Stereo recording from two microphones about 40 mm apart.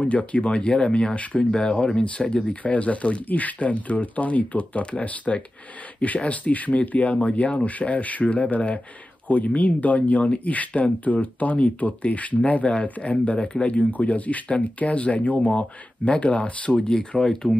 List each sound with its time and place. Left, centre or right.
0.1 s speech: left
17.2 s speech: centre